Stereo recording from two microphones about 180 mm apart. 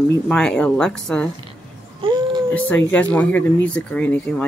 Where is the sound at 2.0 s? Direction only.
30° right (ahead or behind).